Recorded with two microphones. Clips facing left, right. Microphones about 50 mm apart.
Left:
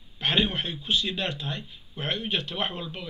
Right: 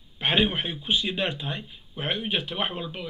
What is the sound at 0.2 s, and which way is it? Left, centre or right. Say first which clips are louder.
A man's voice: right 2 dB; centre.